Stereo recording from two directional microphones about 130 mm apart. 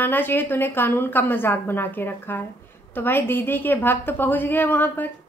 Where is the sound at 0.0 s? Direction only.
15° left (ahead or behind).